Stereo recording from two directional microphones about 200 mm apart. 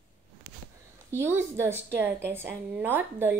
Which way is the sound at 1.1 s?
10° right (ahead or behind).